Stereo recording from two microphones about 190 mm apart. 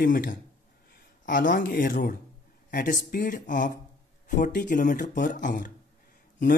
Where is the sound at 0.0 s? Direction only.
45° left (ahead or behind).